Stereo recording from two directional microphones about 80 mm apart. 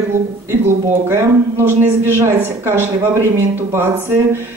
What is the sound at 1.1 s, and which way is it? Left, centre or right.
A woman's voice, right.